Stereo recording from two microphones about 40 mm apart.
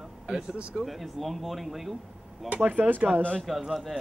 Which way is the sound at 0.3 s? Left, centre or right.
Right.